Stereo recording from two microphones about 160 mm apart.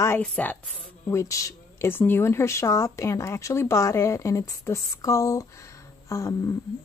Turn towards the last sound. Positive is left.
turn(degrees=20)  # may be behind; listen again after turning